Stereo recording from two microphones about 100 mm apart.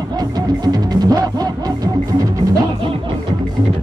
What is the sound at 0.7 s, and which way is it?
Music, 40° right (ahead or behind).